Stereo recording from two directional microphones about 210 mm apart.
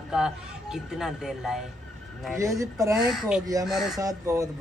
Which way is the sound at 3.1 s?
5° right (ahead or behind).